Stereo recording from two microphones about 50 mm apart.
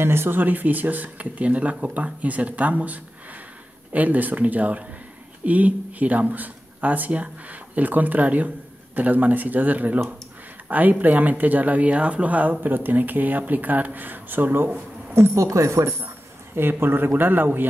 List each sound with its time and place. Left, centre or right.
0.0 s speech: right
0.4 s speech: right
15.3 s speech: right
16.5 s speech: right